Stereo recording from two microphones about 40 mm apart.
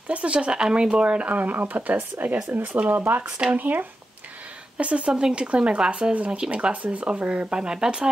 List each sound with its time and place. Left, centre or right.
0.1 s speech: right
2.5 s speech: right
2.9 s speech: right
3.3 s speech: right
3.5 s speech: right
4.7 s speech: right